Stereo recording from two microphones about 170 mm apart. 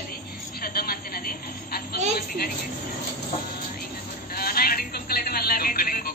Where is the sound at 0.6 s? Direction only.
65° left (ahead or behind).